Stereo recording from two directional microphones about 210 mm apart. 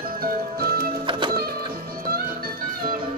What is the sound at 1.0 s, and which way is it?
Music, 20° right (ahead or behind).